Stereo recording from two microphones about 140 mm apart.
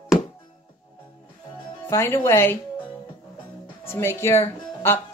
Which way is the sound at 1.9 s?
20° left (ahead or behind).